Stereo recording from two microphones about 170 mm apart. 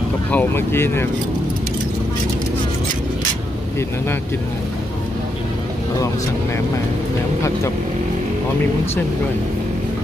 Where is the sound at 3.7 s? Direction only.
15° left (ahead or behind).